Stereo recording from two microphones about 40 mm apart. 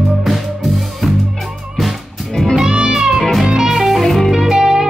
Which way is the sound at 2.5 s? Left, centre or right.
Centre.